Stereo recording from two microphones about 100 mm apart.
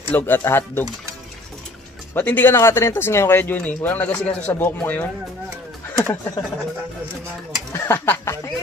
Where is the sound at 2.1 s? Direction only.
20° left (ahead or behind).